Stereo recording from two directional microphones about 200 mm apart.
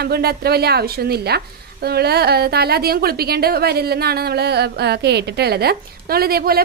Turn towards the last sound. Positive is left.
turn(degrees=-50)  # may be behind; listen again after turning